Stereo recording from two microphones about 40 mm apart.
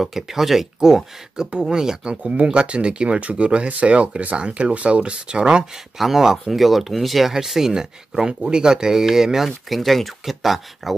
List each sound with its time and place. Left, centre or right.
0.0 s speech: centre
2.2 s speech: right
5.9 s speech: centre
9.7 s speech: centre